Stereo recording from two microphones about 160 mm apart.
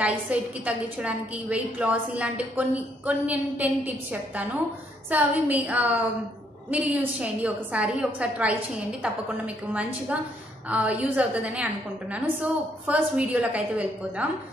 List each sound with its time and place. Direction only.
0.0 s a woman's voice: 10° right (ahead or behind)
9.7 s a woman's voice: 10° right (ahead or behind)